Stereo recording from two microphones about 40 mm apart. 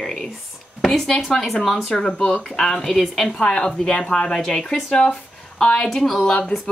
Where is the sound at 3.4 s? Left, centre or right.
Centre.